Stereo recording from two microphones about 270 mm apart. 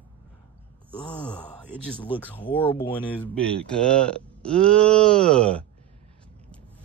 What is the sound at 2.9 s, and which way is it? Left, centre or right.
Speech, centre.